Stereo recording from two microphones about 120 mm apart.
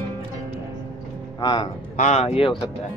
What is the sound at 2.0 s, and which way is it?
Speech, 70° left (ahead or behind).